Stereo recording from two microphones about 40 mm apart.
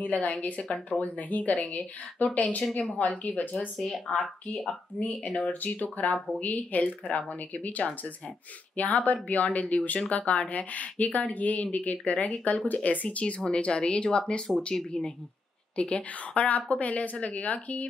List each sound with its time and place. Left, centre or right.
0.0 s speech: left
4.2 s speech: centre
5.0 s speech: left
5.5 s speech: left